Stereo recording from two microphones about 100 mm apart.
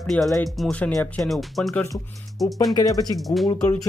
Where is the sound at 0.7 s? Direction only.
15° left (ahead or behind).